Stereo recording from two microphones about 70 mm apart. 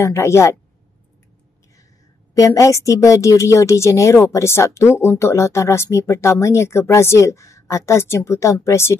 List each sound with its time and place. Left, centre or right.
0.0 s speech: left
2.3 s a woman's voice: left